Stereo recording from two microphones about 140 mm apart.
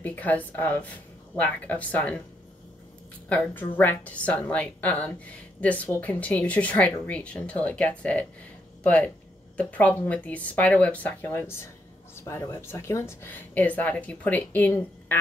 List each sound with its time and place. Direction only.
0.0 s a woman's voice: 10° left (ahead or behind)
3.3 s a woman's voice: 10° left (ahead or behind)